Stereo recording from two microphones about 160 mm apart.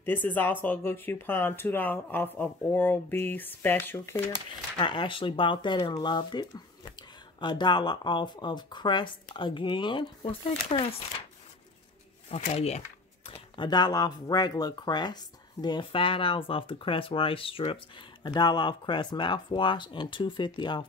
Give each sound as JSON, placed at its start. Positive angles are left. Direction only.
{"t": 0.0, "sound": "speech", "side_deg": 10}
{"t": 4.7, "sound": "speech", "side_deg": 30}
{"t": 12.3, "sound": "speech", "side_deg": 40}